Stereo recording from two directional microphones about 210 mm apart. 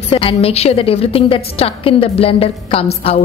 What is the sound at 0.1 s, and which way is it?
A woman's voice, 25° left (ahead or behind).